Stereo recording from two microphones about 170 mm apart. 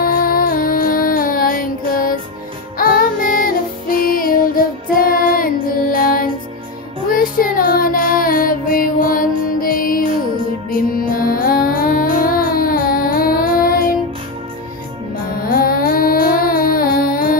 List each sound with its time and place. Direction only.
0.0 s music: 55° left (ahead or behind)
7.1 s child singing: 55° left (ahead or behind)
9.5 s music: 55° left (ahead or behind)
15.3 s music: 60° left (ahead or behind)